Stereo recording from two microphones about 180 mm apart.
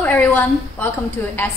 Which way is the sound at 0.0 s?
10° left (ahead or behind).